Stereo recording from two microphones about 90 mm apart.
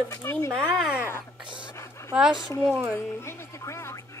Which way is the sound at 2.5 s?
30° left (ahead or behind).